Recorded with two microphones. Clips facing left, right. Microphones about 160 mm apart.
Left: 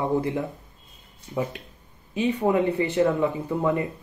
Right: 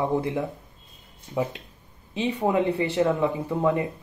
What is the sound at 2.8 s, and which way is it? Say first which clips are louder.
Speech: left 1 dB; 20° right (ahead or behind).